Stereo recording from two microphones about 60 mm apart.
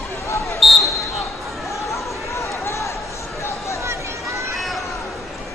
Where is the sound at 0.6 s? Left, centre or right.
Centre.